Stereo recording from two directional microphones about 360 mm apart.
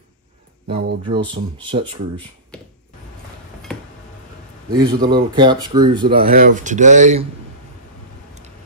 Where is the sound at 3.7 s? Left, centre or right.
Centre.